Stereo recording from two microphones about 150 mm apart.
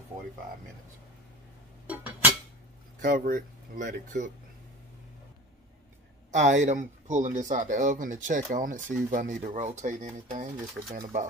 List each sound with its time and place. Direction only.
1.9 s a sound: 10° right (ahead or behind)
3.0 s speech: 65° right (ahead or behind)
6.3 s speech: 55° right (ahead or behind)